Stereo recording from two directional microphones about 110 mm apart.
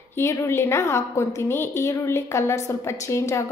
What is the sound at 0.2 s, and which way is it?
A woman's voice, 25° left (ahead or behind).